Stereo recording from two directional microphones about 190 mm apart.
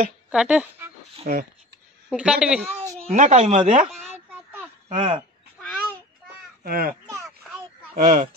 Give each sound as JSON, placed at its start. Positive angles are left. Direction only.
{"t": 0.3, "sound": "speech", "side_deg": -5}
{"t": 1.3, "sound": "speech", "side_deg": -50}
{"t": 2.0, "sound": "speech", "side_deg": -5}
{"t": 3.1, "sound": "speech", "side_deg": -35}
{"t": 4.1, "sound": "a sound", "side_deg": -10}
{"t": 4.8, "sound": "speech", "side_deg": -25}
{"t": 6.6, "sound": "speech", "side_deg": -50}
{"t": 7.2, "sound": "a sound", "side_deg": 0}
{"t": 7.9, "sound": "speech", "side_deg": -50}